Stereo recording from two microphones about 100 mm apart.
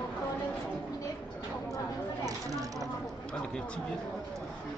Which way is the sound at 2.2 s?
35° right (ahead or behind).